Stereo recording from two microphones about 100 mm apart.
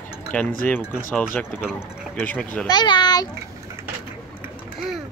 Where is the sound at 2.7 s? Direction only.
45° left (ahead or behind).